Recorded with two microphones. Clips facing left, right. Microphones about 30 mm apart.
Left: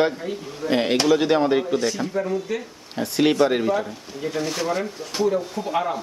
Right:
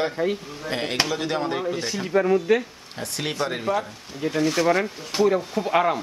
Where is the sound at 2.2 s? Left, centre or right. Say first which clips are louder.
Right 8 dB; right.